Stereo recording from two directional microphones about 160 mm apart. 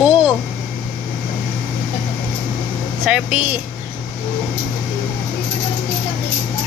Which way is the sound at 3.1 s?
10° right (ahead or behind).